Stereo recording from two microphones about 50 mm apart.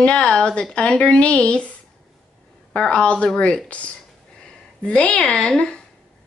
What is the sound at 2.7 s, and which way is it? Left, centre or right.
Speech, left.